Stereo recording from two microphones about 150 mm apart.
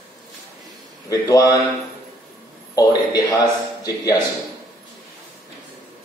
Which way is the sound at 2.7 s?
25° left (ahead or behind).